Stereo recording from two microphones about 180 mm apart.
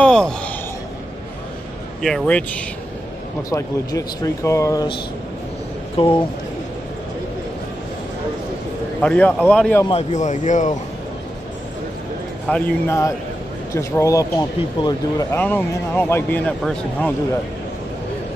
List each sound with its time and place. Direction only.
0.0 s a sound: 5° left (ahead or behind)
2.0 s speech: centre (ahead or behind)
3.4 s a man's voice: 20° left (ahead or behind)
9.0 s a man's voice: 10° left (ahead or behind)
9.8 s a man's voice: 40° left (ahead or behind)
12.4 s a man's voice: 10° left (ahead or behind)
15.3 s a man's voice: 10° left (ahead or behind)